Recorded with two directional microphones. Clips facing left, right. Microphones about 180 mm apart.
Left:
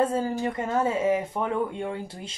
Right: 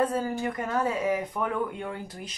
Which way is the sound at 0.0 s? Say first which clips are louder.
Left 2 dB; 25° left (ahead or behind).